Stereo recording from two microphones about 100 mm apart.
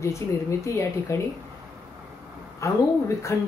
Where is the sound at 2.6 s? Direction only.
30° left (ahead or behind).